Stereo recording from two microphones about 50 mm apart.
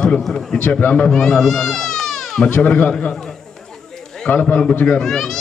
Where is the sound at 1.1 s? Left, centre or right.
Centre.